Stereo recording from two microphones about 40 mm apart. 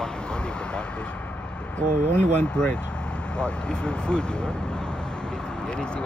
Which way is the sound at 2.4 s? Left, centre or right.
Left.